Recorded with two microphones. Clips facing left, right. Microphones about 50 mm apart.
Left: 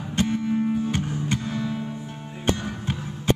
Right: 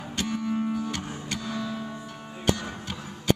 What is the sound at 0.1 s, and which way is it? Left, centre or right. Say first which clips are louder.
Music: left 5 dB; left.